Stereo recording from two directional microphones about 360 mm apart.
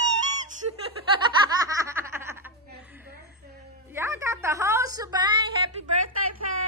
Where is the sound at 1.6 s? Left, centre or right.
Centre.